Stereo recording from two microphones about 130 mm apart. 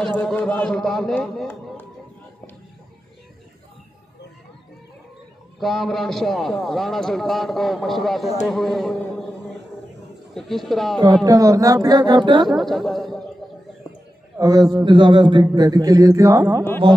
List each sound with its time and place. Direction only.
0.0 s a man's voice: 10° left (ahead or behind)
5.6 s a man's voice: centre (ahead or behind)
10.3 s a man's voice: centre (ahead or behind)
11.2 s speech: 25° right (ahead or behind)
12.4 s a man's voice: centre (ahead or behind)
14.4 s speech: 25° right (ahead or behind)
14.9 s speech: 35° right (ahead or behind)